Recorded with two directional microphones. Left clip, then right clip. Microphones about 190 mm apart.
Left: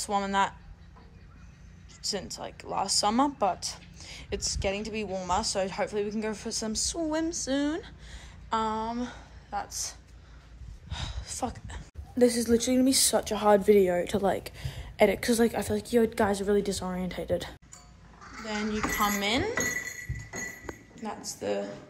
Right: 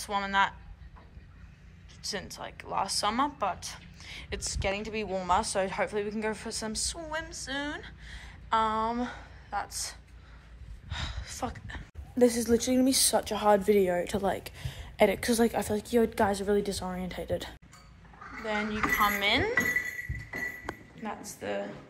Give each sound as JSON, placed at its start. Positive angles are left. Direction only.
{"t": 0.0, "sound": "speech", "side_deg": 25}
{"t": 2.0, "sound": "speech", "side_deg": 20}
{"t": 21.0, "sound": "speech", "side_deg": 10}